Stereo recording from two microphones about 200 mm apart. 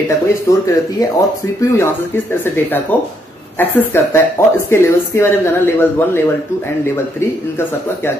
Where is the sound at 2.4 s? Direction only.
10° left (ahead or behind).